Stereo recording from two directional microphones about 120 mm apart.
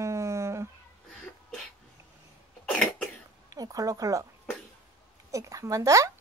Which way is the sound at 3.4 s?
30° right (ahead or behind).